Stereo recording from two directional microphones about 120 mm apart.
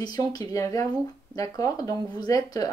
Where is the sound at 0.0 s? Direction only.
35° left (ahead or behind).